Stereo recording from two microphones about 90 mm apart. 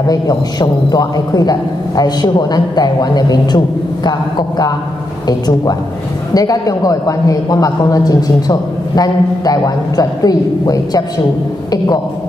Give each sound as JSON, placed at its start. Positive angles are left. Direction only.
{"t": 0.1, "sound": "a man's voice", "side_deg": 45}
{"t": 6.3, "sound": "a man's voice", "side_deg": 45}